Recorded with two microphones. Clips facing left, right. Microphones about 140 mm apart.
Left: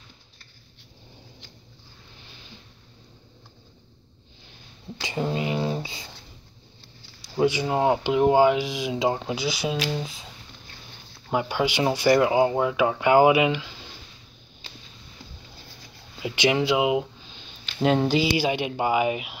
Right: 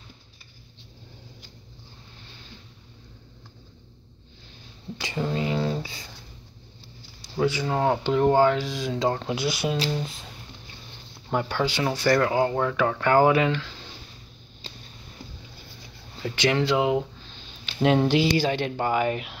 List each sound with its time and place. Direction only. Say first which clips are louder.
5.0 s a sound: left 1 dB; 20° left (ahead or behind)
7.2 s speech: left 2 dB; 15° left (ahead or behind)
9.3 s speech: right 1 dB; centre (ahead or behind)
11.2 s speech: left 1 dB; 10° left (ahead or behind)
16.2 s speech: left 1 dB; 15° left (ahead or behind)
17.6 s speech: right 1 dB; centre (ahead or behind)